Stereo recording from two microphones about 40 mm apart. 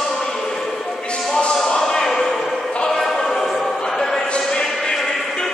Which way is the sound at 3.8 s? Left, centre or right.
Centre.